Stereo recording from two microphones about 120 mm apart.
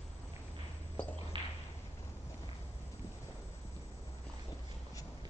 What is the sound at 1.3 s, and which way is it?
Whip, 45° right (ahead or behind).